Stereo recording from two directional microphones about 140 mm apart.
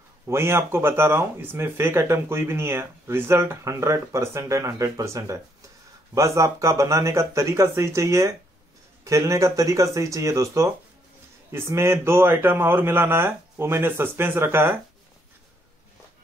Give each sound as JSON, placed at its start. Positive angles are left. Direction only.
{"t": 0.3, "sound": "speech", "side_deg": -20}